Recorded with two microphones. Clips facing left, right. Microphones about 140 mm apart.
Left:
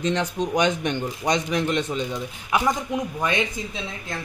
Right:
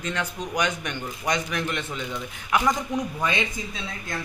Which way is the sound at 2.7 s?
5° left (ahead or behind).